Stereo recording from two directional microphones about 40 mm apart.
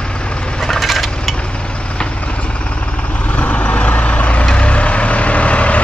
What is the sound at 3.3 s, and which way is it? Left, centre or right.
Vehicle, left.